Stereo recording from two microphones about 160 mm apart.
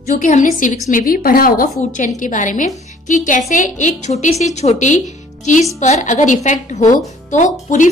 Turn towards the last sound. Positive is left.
turn(degrees=50)  # may be behind; listen again after turning